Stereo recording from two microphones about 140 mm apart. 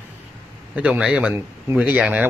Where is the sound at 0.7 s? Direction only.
10° right (ahead or behind).